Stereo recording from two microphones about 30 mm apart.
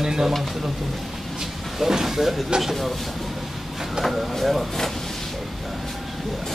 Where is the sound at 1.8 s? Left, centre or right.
Centre.